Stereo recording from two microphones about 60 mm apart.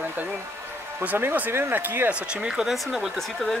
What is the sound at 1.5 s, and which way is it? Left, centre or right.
Speech, right.